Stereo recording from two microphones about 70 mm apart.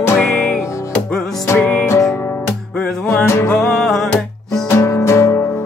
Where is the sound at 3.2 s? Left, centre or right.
Left.